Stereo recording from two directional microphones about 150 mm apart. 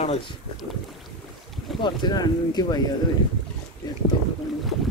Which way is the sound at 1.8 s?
30° left (ahead or behind).